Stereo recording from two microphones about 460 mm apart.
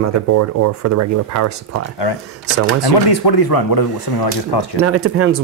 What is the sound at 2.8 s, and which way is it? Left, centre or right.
Speech, left.